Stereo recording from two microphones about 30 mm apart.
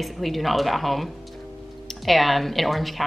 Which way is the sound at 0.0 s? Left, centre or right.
Centre.